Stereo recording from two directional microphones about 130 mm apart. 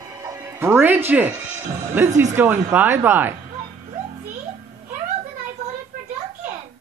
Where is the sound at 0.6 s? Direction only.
15° right (ahead or behind).